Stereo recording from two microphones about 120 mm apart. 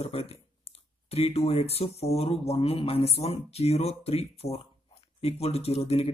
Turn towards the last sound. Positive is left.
turn(degrees=55)  # may be behind; listen again after turning